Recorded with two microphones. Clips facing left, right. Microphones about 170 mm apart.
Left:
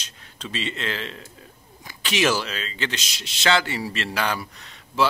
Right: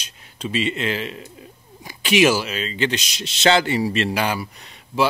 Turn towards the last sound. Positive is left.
turn(degrees=-15)  # may be behind; listen again after turning